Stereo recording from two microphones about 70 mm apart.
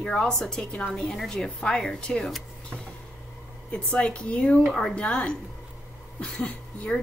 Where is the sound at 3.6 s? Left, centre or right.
Centre.